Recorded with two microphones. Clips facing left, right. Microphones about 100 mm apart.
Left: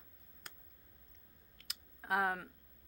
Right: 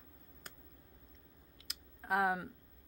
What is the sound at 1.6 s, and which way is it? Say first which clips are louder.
Typing: right 1 dB; centre (ahead or behind).